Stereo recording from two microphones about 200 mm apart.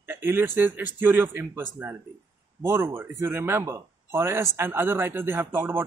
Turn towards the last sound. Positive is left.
turn(degrees=-10)  # may be behind; listen again after turning